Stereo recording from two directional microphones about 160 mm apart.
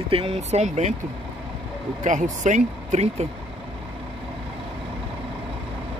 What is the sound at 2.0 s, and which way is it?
Speech, 50° right (ahead or behind).